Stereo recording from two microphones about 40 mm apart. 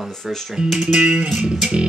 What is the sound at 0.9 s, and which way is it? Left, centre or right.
Music, centre.